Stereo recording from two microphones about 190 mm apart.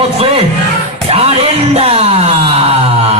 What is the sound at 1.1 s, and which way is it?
Music, 30° right (ahead or behind).